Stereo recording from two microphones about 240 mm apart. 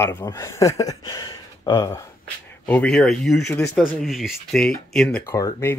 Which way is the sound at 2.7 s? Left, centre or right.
Centre.